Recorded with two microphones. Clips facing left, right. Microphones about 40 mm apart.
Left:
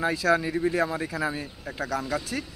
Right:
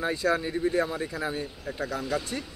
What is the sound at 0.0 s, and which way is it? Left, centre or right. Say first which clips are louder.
Speech: left 3 dB; left.